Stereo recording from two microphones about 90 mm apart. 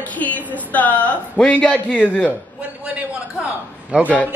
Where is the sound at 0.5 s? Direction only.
15° left (ahead or behind).